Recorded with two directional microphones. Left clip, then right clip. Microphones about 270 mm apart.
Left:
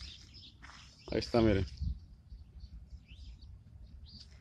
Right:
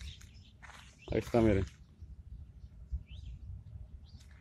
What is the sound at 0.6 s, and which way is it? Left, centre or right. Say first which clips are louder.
Walk: right 4 dB; centre.